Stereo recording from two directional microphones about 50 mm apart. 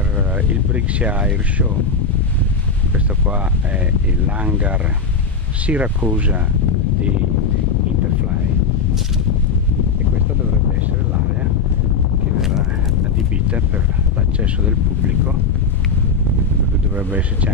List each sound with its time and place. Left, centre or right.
0.7 s speech: right
5.7 s speech: right
12.4 s a sound: centre